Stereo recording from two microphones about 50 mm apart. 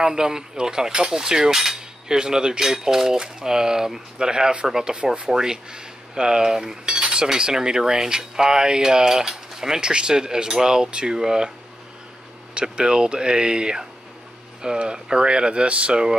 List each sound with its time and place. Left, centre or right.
0.0 s cutlery: centre
12.5 s cutlery: centre
14.6 s speech: centre